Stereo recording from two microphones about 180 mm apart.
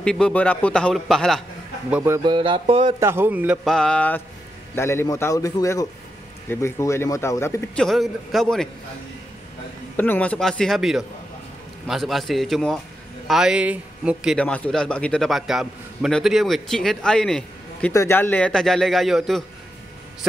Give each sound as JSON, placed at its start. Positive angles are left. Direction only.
{"t": 0.0, "sound": "speech", "side_deg": 5}
{"t": 1.9, "sound": "a man's voice", "side_deg": -10}
{"t": 2.3, "sound": "mantra", "side_deg": -25}
{"t": 3.0, "sound": "a man's voice", "side_deg": -15}
{"t": 3.6, "sound": "speech", "side_deg": 5}
{"t": 7.8, "sound": "speech", "side_deg": 0}
{"t": 9.9, "sound": "speech", "side_deg": 10}